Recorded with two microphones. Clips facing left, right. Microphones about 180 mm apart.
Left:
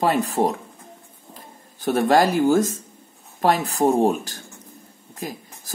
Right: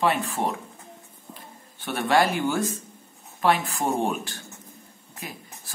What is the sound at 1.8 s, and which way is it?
Speech, 40° left (ahead or behind).